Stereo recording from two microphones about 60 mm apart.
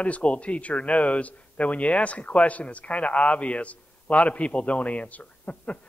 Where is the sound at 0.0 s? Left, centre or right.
Left.